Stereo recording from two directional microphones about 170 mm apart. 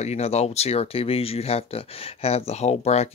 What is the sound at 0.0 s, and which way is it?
Speech, 40° left (ahead or behind).